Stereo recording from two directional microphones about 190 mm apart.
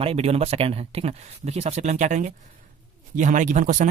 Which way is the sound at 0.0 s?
30° right (ahead or behind).